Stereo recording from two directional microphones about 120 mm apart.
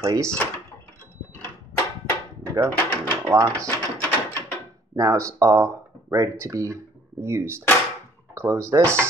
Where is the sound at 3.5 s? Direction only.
15° left (ahead or behind).